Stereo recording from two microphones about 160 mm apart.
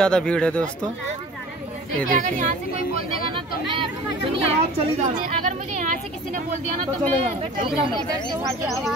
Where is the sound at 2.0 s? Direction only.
55° right (ahead or behind).